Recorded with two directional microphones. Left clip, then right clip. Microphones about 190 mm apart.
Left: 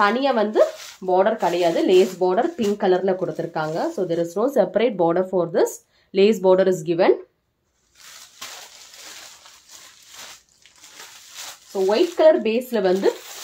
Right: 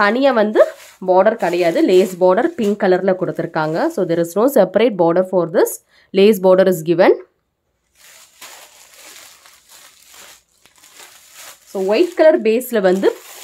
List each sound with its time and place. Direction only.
0.0 s speech: 55° right (ahead or behind)
11.9 s frying: 55° right (ahead or behind)